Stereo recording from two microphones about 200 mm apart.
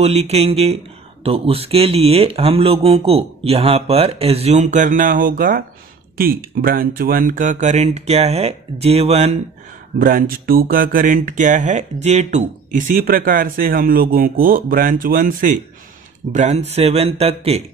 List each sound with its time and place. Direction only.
0.0 s speech: 30° right (ahead or behind)
9.9 s speech: 45° right (ahead or behind)